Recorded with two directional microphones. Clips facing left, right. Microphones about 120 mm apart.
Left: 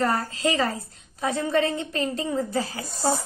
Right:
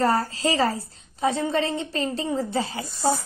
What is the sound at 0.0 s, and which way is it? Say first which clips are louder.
A woman's voice: right 2 dB; 30° right (ahead or behind).